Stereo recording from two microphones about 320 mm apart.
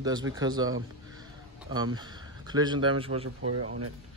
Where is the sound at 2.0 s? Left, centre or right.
Centre.